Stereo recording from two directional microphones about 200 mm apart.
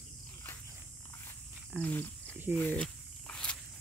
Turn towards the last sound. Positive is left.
turn(degrees=5)  # may be behind; listen again after turning